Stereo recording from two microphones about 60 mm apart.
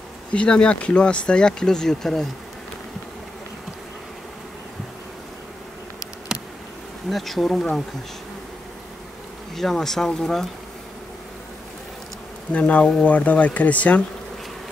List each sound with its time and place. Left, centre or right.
0.3 s speech: centre
7.1 s speech: centre
9.6 s speech: centre
12.5 s speech: left